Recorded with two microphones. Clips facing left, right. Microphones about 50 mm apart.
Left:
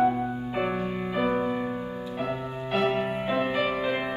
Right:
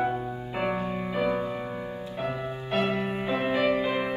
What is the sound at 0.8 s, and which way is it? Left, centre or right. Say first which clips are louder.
Music: left 1 dB; left.